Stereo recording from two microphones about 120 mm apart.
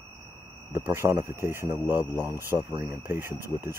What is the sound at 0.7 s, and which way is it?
Speech, 20° right (ahead or behind).